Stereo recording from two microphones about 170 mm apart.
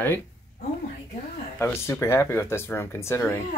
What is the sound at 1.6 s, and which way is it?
Speech, 15° left (ahead or behind).